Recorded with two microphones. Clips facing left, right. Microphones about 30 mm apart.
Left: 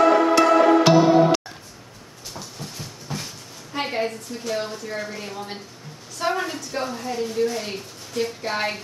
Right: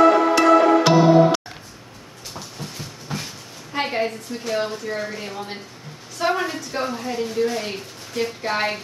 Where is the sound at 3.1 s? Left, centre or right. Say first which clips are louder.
Right 2 dB; centre.